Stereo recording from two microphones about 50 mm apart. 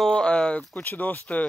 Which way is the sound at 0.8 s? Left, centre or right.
Left.